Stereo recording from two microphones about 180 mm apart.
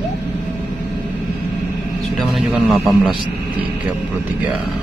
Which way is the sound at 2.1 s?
Centre (ahead or behind).